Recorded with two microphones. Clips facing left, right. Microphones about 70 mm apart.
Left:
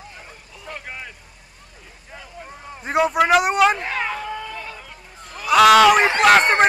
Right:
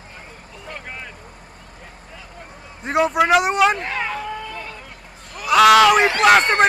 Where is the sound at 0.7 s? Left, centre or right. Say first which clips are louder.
Even; centre.